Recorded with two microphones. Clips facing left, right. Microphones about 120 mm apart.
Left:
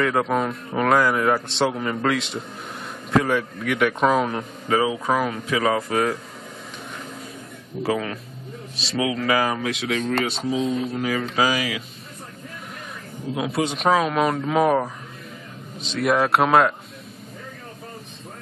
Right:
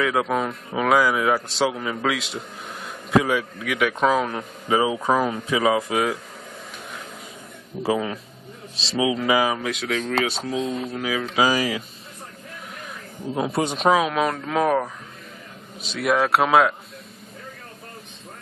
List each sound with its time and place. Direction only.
0.0 s a man's voice: centre (ahead or behind)
4.6 s speech: 20° right (ahead or behind)
5.6 s speech: 10° right (ahead or behind)
7.8 s speech: 20° right (ahead or behind)
9.5 s a man's voice: centre (ahead or behind)
11.5 s a man's voice: 35° right (ahead or behind)
13.6 s a man's voice: 40° right (ahead or behind)
13.8 s a man's voice: 5° right (ahead or behind)